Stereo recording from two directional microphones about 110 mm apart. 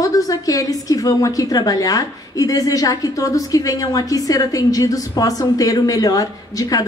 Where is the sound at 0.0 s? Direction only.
35° left (ahead or behind).